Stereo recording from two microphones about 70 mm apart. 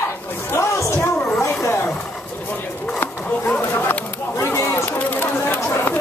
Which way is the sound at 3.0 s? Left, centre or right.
Left.